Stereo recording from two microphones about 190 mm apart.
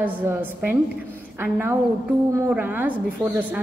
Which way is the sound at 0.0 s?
10° right (ahead or behind).